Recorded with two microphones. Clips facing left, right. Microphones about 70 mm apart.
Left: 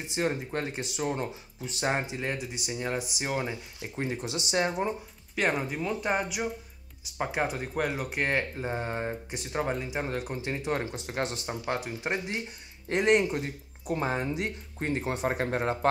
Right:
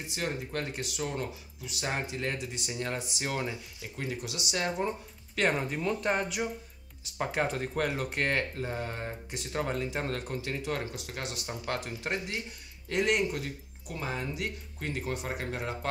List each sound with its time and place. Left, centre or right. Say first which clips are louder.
0.1 s speech: left 5 dB; left
3.8 s speech: left 4 dB; left
11.4 s speech: left 3 dB; centre
12.8 s speech: left 4 dB; left